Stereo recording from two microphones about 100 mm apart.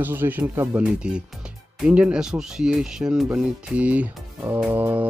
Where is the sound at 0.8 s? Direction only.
10° right (ahead or behind).